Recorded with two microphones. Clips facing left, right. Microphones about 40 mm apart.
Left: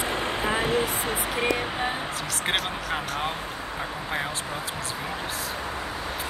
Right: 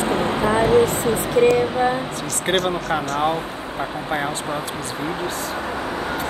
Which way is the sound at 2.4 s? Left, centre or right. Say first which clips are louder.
Right 8 dB; centre.